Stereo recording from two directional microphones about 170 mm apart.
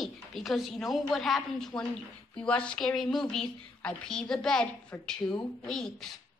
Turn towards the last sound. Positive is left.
turn(degrees=5)  # may be behind; listen again after turning